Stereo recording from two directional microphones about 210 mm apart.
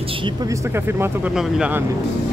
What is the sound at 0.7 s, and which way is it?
Speech, 10° right (ahead or behind).